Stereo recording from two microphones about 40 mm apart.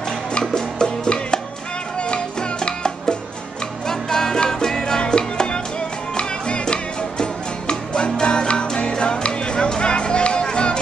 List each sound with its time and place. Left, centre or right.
0.3 s music: centre